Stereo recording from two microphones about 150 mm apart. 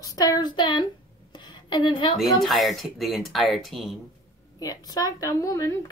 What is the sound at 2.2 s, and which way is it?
Speech, centre (ahead or behind).